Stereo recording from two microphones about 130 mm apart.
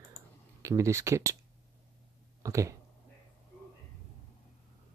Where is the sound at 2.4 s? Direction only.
25° right (ahead or behind).